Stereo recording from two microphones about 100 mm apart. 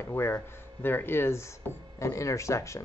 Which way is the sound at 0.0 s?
25° left (ahead or behind).